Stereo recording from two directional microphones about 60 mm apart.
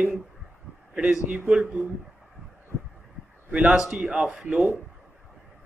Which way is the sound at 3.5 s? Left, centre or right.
Centre.